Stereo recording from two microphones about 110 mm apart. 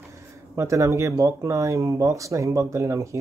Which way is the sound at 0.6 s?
30° right (ahead or behind).